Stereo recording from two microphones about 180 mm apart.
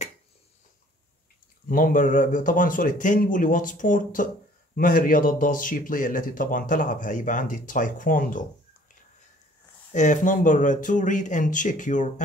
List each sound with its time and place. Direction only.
1.7 s speech: 50° left (ahead or behind)
9.9 s speech: 45° left (ahead or behind)